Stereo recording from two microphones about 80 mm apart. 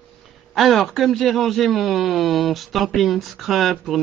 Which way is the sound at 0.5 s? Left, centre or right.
Centre.